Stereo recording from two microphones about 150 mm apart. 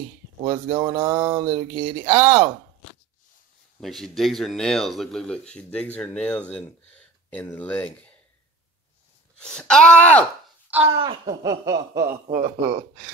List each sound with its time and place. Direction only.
0.4 s speech: 30° right (ahead or behind)
3.8 s speech: centre (ahead or behind)
9.4 s speech: 5° left (ahead or behind)
10.8 s speech: 35° right (ahead or behind)
11.4 s speech: 25° right (ahead or behind)